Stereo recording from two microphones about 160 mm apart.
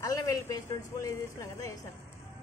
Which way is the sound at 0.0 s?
20° left (ahead or behind).